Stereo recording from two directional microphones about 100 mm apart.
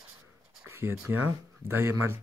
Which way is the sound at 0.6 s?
25° right (ahead or behind).